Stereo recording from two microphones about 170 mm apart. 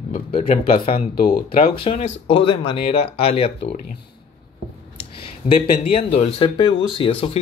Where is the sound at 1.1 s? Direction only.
55° left (ahead or behind).